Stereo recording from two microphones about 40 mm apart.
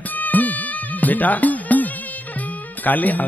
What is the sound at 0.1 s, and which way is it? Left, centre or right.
Music, left.